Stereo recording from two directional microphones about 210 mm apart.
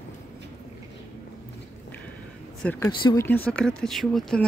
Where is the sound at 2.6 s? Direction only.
10° left (ahead or behind).